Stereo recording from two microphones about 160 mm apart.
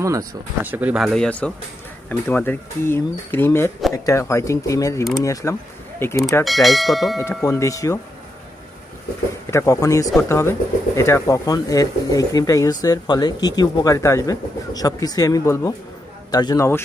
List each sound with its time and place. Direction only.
0.0 s speech: 20° right (ahead or behind)
0.7 s speech: 10° right (ahead or behind); by 6.2 s 15° left (ahead or behind)
6.4 s speech: centre (ahead or behind)
7.4 s speech: 20° left (ahead or behind)
9.5 s speech: 20° left (ahead or behind)